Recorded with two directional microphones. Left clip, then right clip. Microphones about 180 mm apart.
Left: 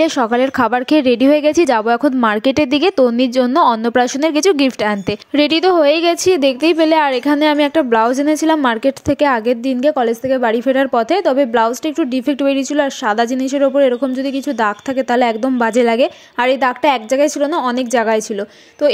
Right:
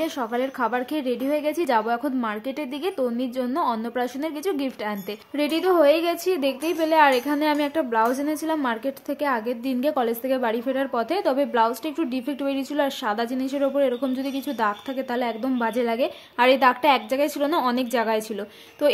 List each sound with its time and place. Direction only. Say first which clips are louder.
0.0 s a woman's voice: left 12 dB; 40° left (ahead or behind)